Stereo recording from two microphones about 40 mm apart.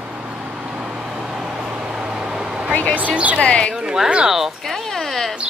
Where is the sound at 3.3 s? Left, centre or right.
Left.